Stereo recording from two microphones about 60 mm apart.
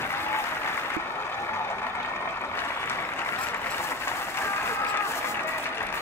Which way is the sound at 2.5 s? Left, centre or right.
Left.